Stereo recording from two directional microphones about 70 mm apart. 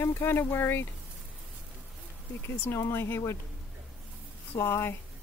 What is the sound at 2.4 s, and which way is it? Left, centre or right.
Speech, left.